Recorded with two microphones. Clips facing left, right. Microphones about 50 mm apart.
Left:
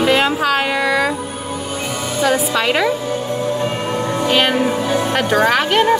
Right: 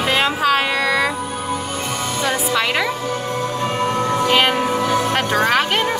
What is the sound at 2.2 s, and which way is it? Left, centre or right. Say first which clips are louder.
Speech: left 4 dB; centre.